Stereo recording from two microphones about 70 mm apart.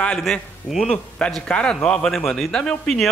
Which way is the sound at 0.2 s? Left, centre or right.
Centre.